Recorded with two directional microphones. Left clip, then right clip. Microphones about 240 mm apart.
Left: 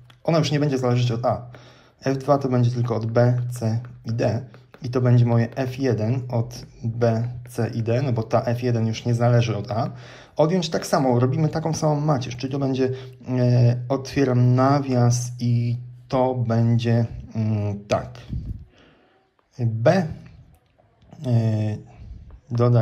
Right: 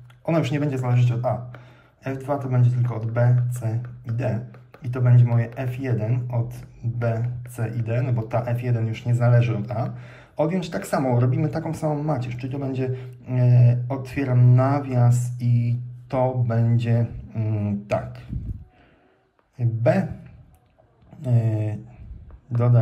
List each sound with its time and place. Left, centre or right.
0.2 s speech: centre
4.8 s speech: centre
19.5 s speech: centre
21.2 s speech: centre